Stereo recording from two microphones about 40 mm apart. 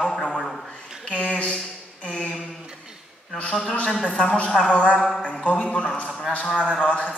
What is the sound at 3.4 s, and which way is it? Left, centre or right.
A man's voice, left.